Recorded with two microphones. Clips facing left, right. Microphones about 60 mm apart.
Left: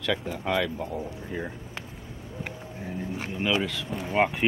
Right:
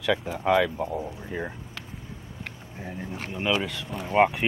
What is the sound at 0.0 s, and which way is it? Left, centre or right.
Speech, centre.